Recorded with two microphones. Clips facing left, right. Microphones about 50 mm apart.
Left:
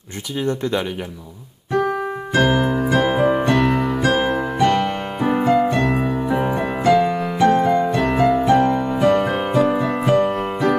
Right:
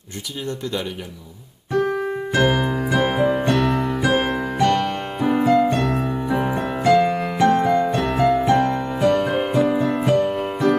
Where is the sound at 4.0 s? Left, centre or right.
Centre.